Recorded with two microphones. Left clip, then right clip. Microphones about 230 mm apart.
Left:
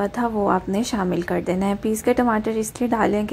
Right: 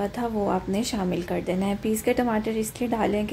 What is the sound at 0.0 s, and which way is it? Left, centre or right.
A woman's voice, centre.